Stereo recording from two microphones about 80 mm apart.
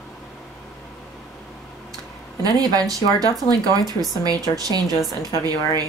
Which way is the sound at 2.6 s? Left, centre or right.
Right.